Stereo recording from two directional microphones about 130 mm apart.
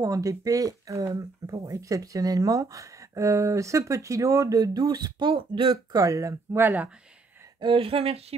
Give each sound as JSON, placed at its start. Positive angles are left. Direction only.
{"t": 0.0, "sound": "speech", "side_deg": -25}
{"t": 7.6, "sound": "speech", "side_deg": -45}